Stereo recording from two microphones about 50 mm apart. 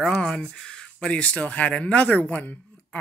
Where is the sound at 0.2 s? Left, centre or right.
Centre.